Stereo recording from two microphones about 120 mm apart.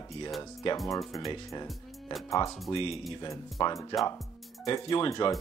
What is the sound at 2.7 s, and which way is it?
Speech, 55° left (ahead or behind).